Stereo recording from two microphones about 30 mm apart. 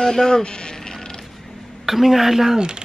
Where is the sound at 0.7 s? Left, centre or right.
Centre.